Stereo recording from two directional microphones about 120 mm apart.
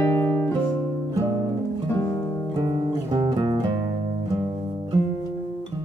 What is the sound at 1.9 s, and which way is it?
Music, 25° left (ahead or behind).